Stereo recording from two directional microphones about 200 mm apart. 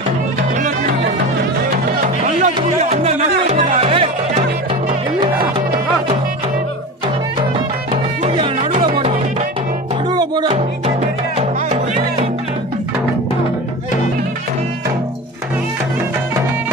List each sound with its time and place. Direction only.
1.9 s music: 35° right (ahead or behind)
7.9 s music: 25° right (ahead or behind)
10.5 s music: 35° right (ahead or behind)